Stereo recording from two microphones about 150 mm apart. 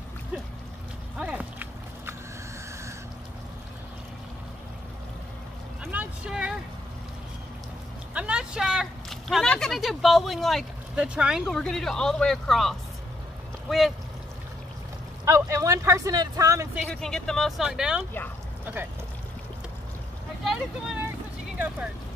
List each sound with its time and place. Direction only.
1.2 s a sound: 10° right (ahead or behind)
5.9 s boat: 10° right (ahead or behind)
8.1 s speech: 10° right (ahead or behind)
15.2 s speech: 20° right (ahead or behind)
16.7 s speech: 5° left (ahead or behind)
20.4 s speech: 5° right (ahead or behind)